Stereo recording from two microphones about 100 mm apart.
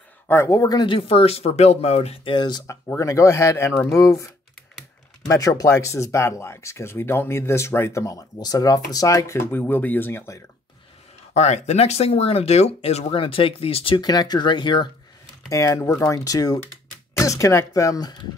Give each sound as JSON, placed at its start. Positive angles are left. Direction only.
{"t": 0.3, "sound": "speech", "side_deg": 30}
{"t": 0.8, "sound": "speech", "side_deg": 65}
{"t": 2.3, "sound": "speech", "side_deg": 45}
{"t": 3.0, "sound": "speech", "side_deg": 30}
{"t": 5.3, "sound": "speech", "side_deg": 35}
{"t": 11.4, "sound": "speech", "side_deg": 90}
{"t": 13.9, "sound": "speech", "side_deg": 40}
{"t": 15.5, "sound": "speech", "side_deg": 30}